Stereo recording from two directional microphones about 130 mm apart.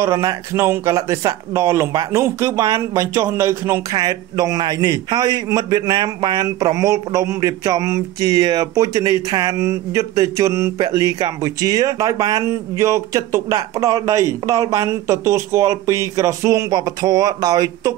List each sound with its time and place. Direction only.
0.0 s a man's voice: 25° right (ahead or behind)
3.9 s a man's voice: 30° right (ahead or behind)